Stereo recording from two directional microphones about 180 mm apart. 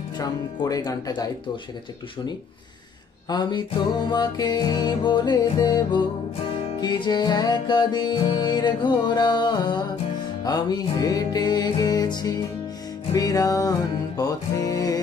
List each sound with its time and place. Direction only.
0.2 s music: 20° left (ahead or behind)
3.3 s music: 25° left (ahead or behind)